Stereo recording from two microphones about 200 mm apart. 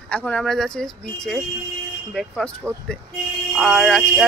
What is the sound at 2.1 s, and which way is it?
Speech, centre (ahead or behind).